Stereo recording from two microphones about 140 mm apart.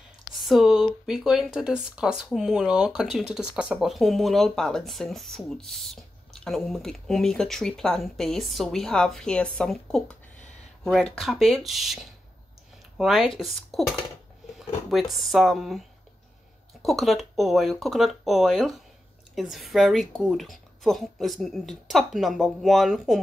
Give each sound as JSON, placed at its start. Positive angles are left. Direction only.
{"t": 0.4, "sound": "speech", "side_deg": 0}
{"t": 14.9, "sound": "speech", "side_deg": 0}
{"t": 16.8, "sound": "speech", "side_deg": 0}